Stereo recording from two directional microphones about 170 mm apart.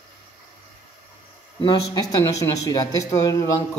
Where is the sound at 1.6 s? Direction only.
25° left (ahead or behind).